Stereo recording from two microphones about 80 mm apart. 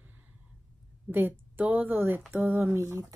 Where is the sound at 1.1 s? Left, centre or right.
Right.